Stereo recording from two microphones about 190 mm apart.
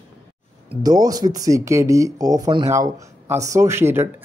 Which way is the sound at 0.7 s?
20° right (ahead or behind).